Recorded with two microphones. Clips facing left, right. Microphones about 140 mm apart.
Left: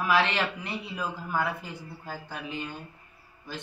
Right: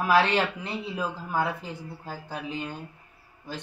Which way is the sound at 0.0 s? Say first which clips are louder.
Right 3 dB; 35° right (ahead or behind).